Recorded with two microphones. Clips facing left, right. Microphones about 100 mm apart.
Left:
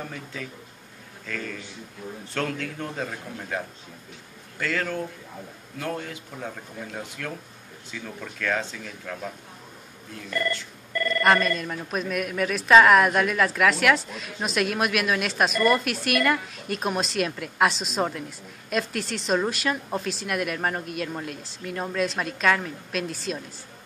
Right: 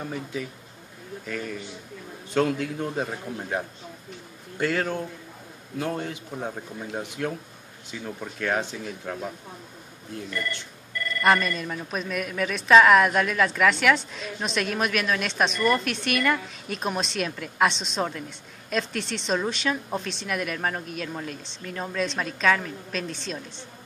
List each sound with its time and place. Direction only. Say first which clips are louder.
0.0 s speech: right 4 dB; 15° right (ahead or behind)
11.2 s a man's voice: even; centre (ahead or behind)